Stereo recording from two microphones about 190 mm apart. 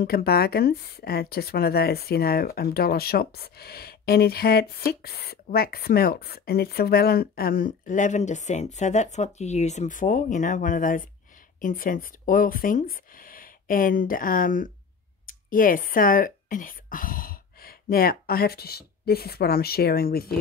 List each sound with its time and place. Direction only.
0.0 s speech: 55° left (ahead or behind)